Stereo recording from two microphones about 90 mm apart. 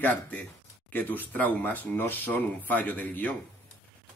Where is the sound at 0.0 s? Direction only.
20° left (ahead or behind).